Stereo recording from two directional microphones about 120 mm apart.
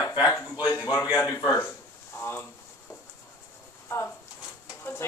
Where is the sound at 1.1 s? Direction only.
25° left (ahead or behind).